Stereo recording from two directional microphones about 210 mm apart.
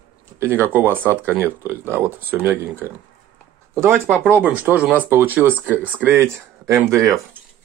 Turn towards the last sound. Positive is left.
turn(degrees=-15)  # may be behind; listen again after turning